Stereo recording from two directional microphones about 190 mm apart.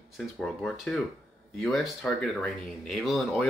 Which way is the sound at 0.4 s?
Centre (ahead or behind).